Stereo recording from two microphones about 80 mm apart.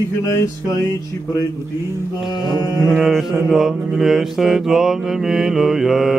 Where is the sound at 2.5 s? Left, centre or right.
Left.